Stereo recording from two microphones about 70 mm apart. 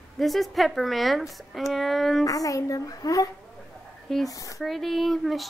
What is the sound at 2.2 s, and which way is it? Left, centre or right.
A child's voice, left.